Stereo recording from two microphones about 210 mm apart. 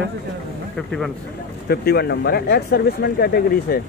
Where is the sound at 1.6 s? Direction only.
50° left (ahead or behind).